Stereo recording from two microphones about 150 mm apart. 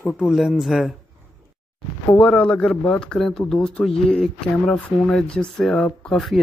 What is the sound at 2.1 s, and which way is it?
Speech, 5° left (ahead or behind).